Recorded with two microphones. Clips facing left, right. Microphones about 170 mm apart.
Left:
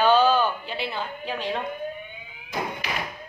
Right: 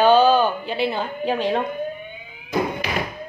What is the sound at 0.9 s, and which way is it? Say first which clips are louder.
Speech: right 7 dB; 45° right (ahead or behind).